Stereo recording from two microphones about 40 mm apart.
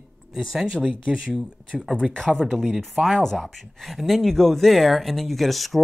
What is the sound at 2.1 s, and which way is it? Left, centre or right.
Speech, centre.